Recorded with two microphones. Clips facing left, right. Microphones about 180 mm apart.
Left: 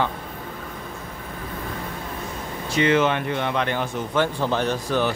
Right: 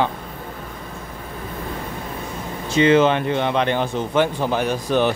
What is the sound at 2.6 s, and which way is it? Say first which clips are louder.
Speech: right 5 dB; 25° right (ahead or behind).